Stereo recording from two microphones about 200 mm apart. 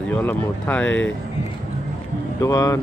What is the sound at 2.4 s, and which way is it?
Speech, 20° left (ahead or behind).